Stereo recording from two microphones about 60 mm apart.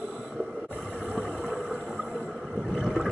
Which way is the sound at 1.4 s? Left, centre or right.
Centre.